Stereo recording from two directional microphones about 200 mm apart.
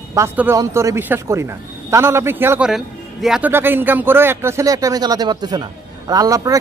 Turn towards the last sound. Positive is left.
turn(degrees=-15)  # may be behind; listen again after turning